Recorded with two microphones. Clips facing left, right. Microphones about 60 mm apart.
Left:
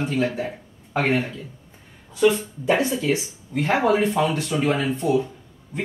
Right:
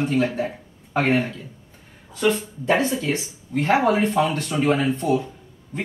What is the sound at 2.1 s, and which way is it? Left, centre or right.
A man's voice, centre.